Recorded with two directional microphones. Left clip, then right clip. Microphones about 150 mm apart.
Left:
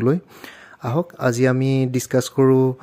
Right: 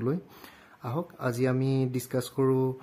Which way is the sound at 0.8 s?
35° left (ahead or behind).